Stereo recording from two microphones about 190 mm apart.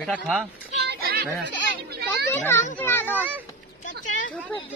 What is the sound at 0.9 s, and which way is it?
Children playing, 55° right (ahead or behind).